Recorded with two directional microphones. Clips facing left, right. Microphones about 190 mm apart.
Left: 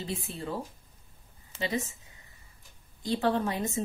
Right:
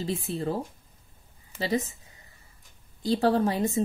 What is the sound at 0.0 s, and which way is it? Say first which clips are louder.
Speech: right 6 dB; 35° right (ahead or behind).